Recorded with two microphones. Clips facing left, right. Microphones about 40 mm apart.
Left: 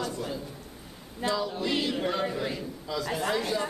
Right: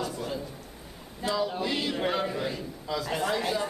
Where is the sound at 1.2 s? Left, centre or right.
Centre.